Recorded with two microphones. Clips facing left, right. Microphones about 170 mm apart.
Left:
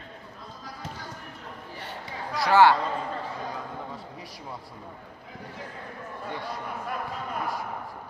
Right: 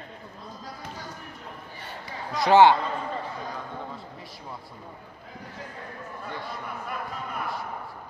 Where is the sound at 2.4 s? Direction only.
20° right (ahead or behind).